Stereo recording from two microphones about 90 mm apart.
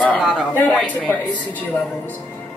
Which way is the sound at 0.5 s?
15° left (ahead or behind).